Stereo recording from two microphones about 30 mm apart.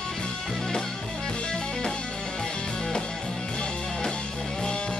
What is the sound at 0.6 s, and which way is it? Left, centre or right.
Music, left.